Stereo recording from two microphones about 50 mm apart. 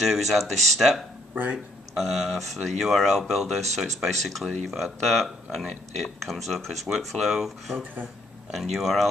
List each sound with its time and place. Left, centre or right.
0.0 s speech: centre
1.3 s speech: right
2.0 s speech: centre